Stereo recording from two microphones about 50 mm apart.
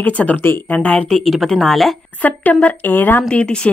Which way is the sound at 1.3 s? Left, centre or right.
Centre.